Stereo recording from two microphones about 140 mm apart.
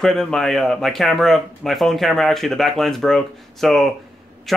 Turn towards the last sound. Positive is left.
turn(degrees=0)  # may be behind; listen again after turning